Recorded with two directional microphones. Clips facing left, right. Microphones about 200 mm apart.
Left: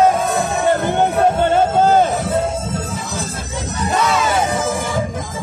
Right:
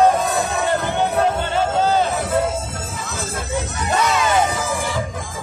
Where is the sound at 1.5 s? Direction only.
50° left (ahead or behind).